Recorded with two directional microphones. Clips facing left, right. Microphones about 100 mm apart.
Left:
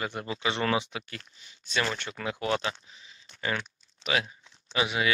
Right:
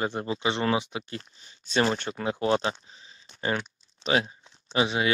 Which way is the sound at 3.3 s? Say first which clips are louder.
Right 3 dB; 30° right (ahead or behind).